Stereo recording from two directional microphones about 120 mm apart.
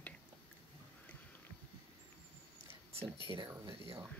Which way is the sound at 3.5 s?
20° right (ahead or behind).